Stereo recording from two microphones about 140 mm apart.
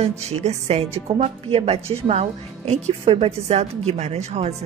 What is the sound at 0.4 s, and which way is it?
A woman's voice, 50° right (ahead or behind).